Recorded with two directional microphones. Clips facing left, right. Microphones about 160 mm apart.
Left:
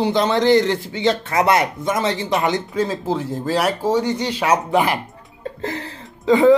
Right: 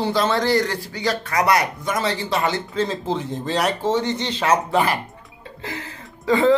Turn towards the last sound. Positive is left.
turn(degrees=15)  # may be behind; listen again after turning